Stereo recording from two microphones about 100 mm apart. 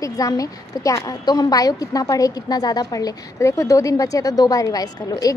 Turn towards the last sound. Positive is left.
turn(degrees=40)  # may be behind; listen again after turning